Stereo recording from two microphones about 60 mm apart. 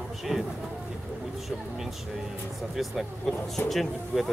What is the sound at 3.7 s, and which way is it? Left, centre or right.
Speech, centre.